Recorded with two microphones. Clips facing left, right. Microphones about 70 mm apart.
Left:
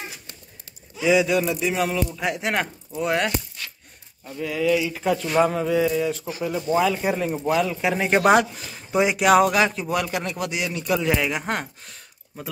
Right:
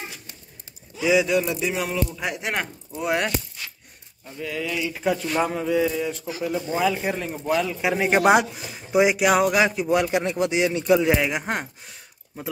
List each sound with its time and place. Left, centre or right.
1.0 s speech: centre
4.4 s speech: centre
8.1 s speech: centre
9.8 s speech: right
11.0 s speech: centre